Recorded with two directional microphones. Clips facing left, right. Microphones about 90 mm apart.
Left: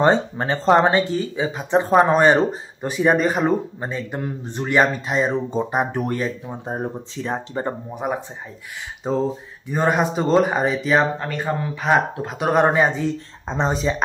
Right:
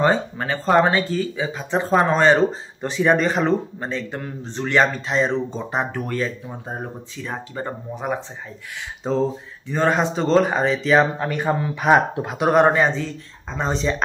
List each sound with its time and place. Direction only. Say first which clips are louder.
0.0 s speech: left 2 dB; 25° left (ahead or behind)
7.9 s speech: left 1 dB; 10° left (ahead or behind)
12.7 s speech: left 1 dB; 10° left (ahead or behind)